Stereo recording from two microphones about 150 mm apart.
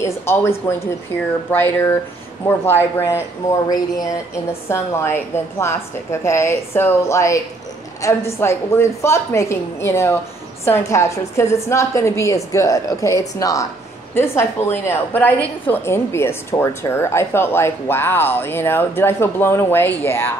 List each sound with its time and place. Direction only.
0.0 s a woman's voice: 15° left (ahead or behind)
4.5 s a woman's voice: 15° left (ahead or behind)